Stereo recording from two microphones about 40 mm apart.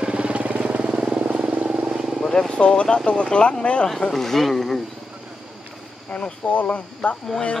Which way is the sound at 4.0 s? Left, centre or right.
Centre.